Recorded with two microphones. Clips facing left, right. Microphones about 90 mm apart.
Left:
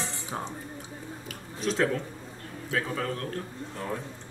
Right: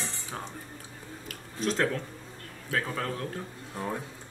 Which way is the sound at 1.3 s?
Centre (ahead or behind).